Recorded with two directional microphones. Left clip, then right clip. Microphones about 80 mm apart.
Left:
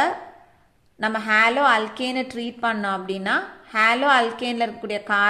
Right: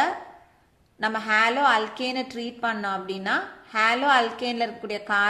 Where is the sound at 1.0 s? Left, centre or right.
Left.